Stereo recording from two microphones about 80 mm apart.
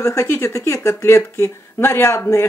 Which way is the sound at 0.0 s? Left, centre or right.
Left.